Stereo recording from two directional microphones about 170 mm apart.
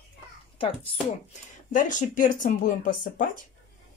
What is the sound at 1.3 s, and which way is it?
Speech, 50° left (ahead or behind).